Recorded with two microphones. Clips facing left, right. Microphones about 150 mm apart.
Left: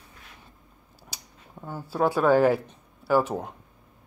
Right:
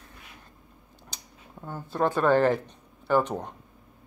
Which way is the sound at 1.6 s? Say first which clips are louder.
Left 2 dB; 10° left (ahead or behind).